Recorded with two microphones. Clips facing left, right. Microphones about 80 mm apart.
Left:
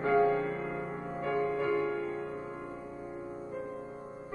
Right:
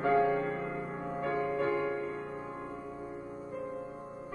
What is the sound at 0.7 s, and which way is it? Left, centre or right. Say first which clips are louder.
Music: even; right.